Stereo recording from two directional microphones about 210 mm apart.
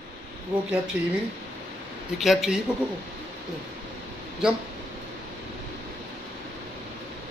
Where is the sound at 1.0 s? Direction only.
5° right (ahead or behind).